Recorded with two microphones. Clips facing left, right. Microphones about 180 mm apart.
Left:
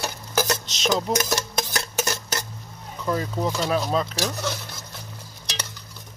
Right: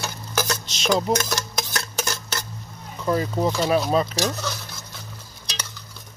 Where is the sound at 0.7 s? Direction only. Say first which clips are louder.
Right 2 dB; centre (ahead or behind).